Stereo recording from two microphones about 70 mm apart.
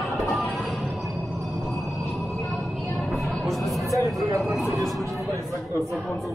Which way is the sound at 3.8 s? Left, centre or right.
Right.